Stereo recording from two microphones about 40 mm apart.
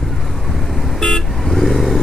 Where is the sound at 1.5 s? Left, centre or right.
Centre.